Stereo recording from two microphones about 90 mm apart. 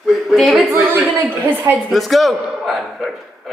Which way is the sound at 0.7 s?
30° right (ahead or behind).